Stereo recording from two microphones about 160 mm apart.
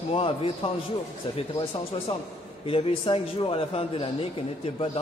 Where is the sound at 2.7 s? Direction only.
35° left (ahead or behind).